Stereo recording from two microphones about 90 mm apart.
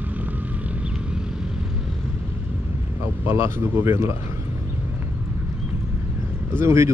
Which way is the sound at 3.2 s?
25° right (ahead or behind).